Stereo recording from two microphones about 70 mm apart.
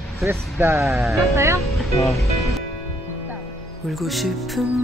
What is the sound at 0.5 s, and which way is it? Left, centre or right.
Speech, right.